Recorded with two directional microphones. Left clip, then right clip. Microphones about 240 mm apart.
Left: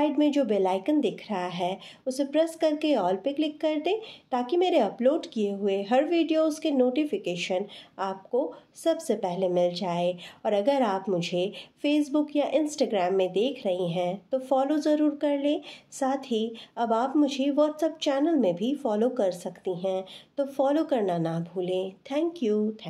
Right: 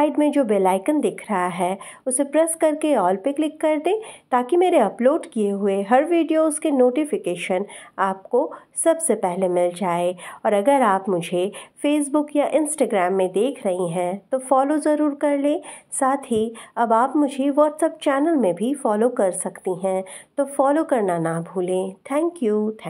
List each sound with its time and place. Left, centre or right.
0.0 s speech: right